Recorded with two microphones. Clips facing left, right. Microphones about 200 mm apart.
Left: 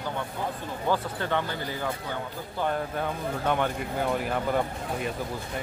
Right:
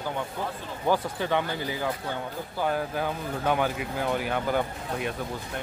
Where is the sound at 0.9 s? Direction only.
15° right (ahead or behind).